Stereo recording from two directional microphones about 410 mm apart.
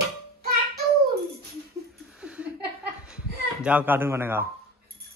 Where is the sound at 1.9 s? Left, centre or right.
Centre.